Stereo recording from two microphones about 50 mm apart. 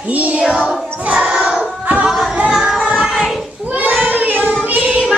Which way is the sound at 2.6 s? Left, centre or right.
Centre.